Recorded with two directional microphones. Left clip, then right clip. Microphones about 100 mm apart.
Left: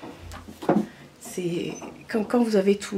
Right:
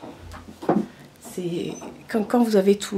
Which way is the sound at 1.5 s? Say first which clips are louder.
Right 2 dB; 20° right (ahead or behind).